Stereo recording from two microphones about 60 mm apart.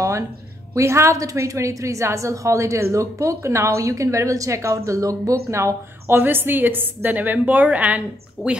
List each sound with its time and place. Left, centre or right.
0.7 s a woman's voice: right
1.1 s a woman's voice: right
5.3 s a woman's voice: right
8.4 s speech: centre